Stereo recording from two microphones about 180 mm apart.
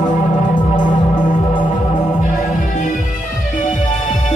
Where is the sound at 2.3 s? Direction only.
45° left (ahead or behind).